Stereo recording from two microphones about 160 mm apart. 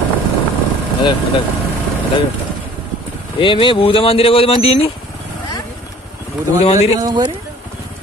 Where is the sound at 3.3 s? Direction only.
30° left (ahead or behind).